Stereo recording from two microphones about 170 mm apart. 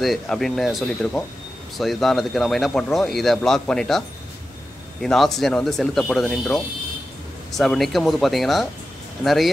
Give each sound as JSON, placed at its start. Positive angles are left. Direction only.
{"t": 0.0, "sound": "speech", "side_deg": 0}
{"t": 5.0, "sound": "speech", "side_deg": 0}